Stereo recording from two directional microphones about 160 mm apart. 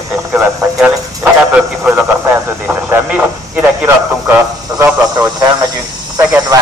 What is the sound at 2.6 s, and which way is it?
Radio, 10° right (ahead or behind).